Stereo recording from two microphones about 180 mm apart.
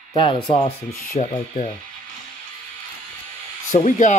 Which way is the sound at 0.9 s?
50° left (ahead or behind).